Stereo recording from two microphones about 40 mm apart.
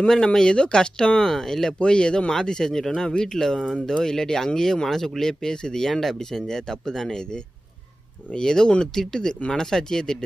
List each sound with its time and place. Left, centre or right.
0.1 s speech: centre
1.8 s speech: left
3.0 s speech: centre
8.3 s speech: centre